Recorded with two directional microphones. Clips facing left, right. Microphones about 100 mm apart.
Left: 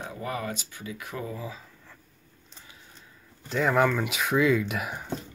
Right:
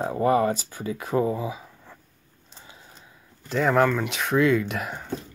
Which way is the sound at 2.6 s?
25° right (ahead or behind).